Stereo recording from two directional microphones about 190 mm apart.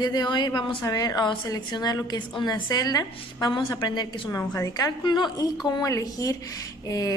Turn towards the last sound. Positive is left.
turn(degrees=20)  # may be behind; listen again after turning